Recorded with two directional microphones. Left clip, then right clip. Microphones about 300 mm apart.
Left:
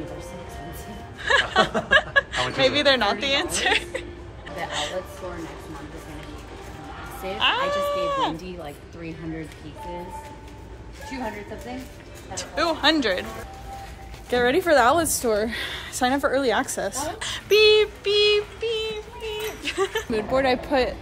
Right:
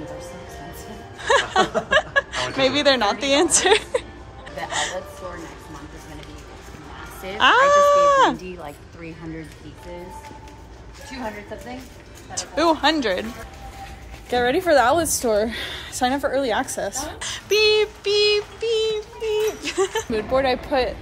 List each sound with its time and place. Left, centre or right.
1.2 s music: centre
1.9 s a woman's voice: centre
4.6 s music: right
7.3 s speech: right
12.4 s speech: centre
14.3 s a woman's voice: centre
17.2 s synthetic singing: centre
20.1 s a woman's voice: centre